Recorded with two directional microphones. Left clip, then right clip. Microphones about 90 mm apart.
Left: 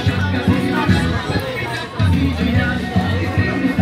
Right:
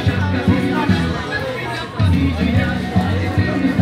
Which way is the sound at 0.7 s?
40° left (ahead or behind).